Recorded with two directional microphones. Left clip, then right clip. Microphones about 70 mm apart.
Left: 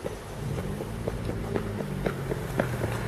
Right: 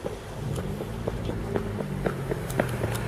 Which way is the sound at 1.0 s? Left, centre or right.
Left.